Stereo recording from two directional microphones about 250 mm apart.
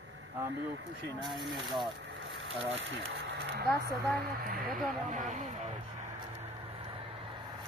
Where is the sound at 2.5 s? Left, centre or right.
Right.